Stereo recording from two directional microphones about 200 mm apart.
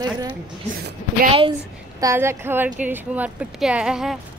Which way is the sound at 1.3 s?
25° right (ahead or behind).